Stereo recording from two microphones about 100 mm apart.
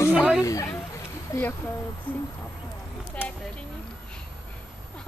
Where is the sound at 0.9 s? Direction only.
25° left (ahead or behind).